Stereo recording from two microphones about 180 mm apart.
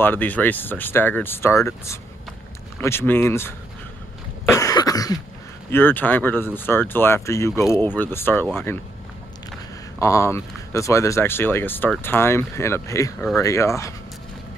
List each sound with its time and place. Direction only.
0.0 s speech: 10° left (ahead or behind)
4.5 s cough: 20° left (ahead or behind)
5.7 s speech: 10° left (ahead or behind)
9.9 s speech: 15° left (ahead or behind)